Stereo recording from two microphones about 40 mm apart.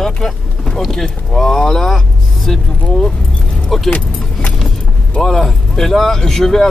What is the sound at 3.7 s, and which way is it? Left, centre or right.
Speech, centre.